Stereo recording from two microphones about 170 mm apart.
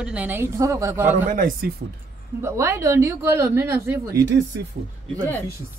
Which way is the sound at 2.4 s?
15° right (ahead or behind).